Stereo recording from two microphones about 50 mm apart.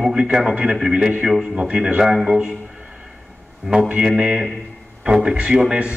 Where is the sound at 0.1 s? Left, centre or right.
Centre.